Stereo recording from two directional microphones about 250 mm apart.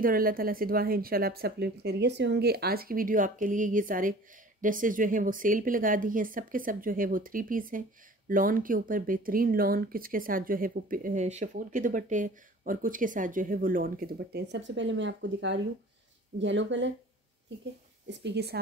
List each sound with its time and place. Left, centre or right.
0.0 s speech: right
18.2 s speech: right